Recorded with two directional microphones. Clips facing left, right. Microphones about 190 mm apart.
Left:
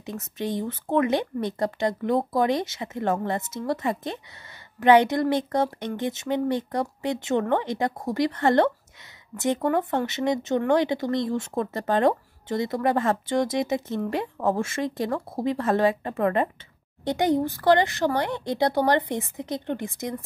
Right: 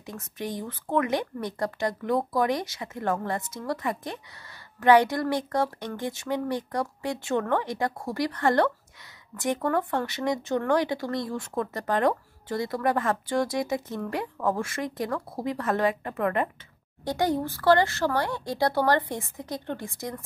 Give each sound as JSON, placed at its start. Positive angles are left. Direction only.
{"t": 0.0, "sound": "speech", "side_deg": 25}